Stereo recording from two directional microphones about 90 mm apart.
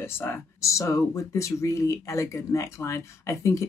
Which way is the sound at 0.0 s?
30° left (ahead or behind).